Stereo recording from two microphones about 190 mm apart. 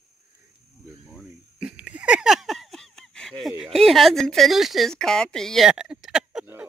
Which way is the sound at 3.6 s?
Centre (ahead or behind).